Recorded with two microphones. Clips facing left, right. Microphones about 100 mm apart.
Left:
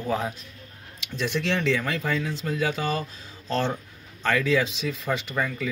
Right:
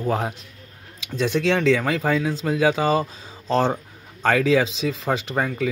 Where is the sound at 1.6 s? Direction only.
90° right.